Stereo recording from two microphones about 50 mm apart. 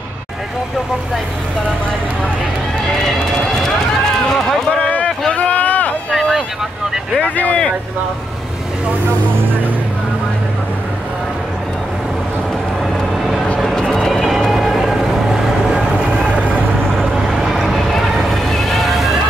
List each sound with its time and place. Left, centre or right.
3.0 s run: centre
4.8 s a sound: left
7.2 s a sound: left
12.9 s vehicle: centre
13.7 s music: centre
16.3 s vehicle: right
17.3 s vehicle: centre
17.6 s vehicle: centre